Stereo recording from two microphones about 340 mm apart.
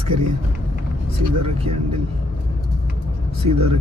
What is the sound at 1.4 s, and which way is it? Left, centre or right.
Speech, centre.